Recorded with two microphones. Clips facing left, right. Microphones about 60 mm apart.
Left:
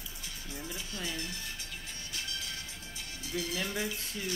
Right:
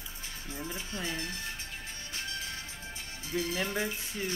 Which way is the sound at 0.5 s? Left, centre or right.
Right.